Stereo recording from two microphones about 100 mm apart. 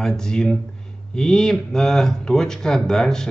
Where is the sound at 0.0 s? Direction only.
5° left (ahead or behind).